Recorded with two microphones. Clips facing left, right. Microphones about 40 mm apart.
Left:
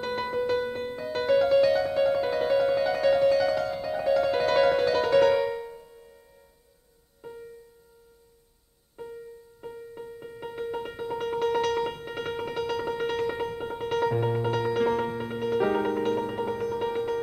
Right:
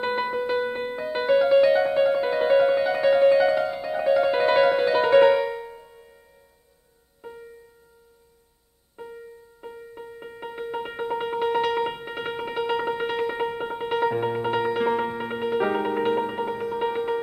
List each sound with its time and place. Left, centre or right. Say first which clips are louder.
0.2 s music: right 2 dB; centre
5.3 s music: right 2 dB; centre
7.2 s music: right 1 dB; centre
8.9 s music: even; centre
15.9 s music: right 3 dB; right